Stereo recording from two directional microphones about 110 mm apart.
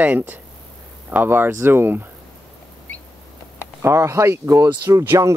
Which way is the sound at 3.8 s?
25° right (ahead or behind).